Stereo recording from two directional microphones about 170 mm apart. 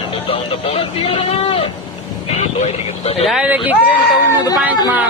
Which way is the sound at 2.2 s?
40° left (ahead or behind).